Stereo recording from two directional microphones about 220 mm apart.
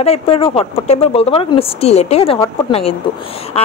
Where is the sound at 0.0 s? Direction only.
25° left (ahead or behind).